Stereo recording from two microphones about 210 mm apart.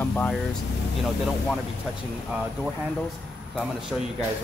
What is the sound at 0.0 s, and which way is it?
Vehicle, 5° left (ahead or behind).